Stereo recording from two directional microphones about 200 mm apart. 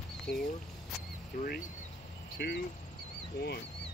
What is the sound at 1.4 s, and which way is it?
Speech, 40° left (ahead or behind).